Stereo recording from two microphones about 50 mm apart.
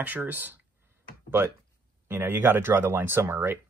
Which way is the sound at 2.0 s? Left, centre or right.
Right.